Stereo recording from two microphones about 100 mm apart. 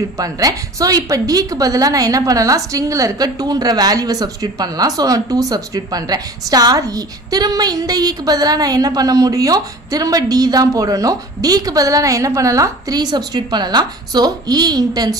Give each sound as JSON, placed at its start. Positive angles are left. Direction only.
{"t": 0.2, "sound": "a woman's voice", "side_deg": -35}